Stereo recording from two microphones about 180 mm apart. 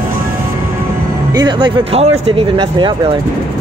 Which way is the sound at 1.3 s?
25° right (ahead or behind).